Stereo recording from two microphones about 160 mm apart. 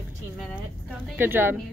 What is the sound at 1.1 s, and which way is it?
Speech, 15° right (ahead or behind).